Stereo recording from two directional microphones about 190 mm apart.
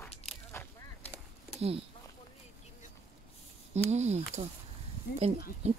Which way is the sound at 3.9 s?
35° right (ahead or behind).